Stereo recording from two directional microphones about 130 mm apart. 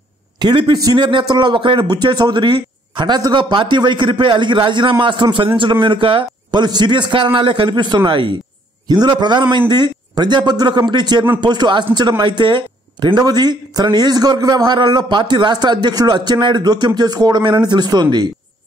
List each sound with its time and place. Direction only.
0.4 s speech: 35° right (ahead or behind)